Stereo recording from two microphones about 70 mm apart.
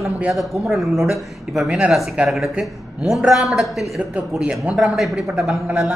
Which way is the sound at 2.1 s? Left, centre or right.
Centre.